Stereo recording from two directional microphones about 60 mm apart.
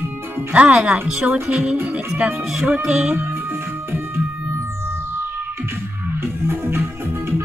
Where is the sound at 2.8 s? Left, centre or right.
Centre.